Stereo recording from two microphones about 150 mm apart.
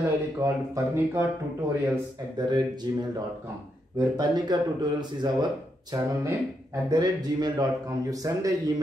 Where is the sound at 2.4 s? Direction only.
30° right (ahead or behind).